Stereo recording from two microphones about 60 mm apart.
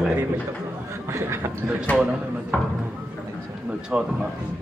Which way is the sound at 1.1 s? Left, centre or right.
Right.